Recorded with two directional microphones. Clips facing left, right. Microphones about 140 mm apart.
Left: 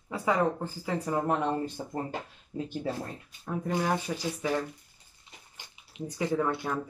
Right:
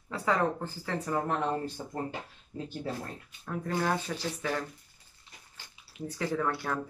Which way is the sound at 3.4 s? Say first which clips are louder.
Left 1 dB; 15° left (ahead or behind).